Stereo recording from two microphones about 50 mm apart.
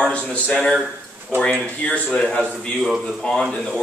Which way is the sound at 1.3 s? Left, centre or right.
Right.